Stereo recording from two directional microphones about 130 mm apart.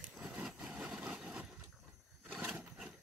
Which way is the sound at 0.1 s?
5° right (ahead or behind).